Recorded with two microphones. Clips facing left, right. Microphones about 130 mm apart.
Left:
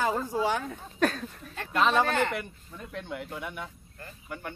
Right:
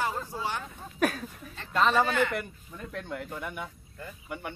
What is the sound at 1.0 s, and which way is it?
Speech, 10° right (ahead or behind).